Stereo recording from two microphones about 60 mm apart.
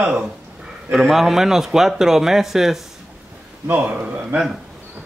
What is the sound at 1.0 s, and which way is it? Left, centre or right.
Speech, centre.